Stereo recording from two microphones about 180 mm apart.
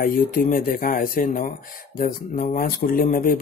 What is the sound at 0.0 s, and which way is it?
Speech, 50° left (ahead or behind).